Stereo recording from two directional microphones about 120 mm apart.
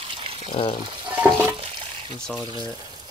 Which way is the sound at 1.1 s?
15° right (ahead or behind).